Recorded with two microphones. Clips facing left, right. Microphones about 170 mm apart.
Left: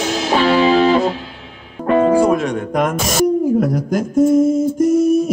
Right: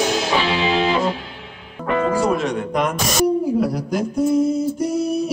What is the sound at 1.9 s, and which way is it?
Speech, 45° left (ahead or behind).